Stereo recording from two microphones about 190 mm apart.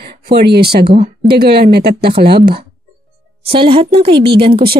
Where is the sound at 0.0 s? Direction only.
55° right (ahead or behind).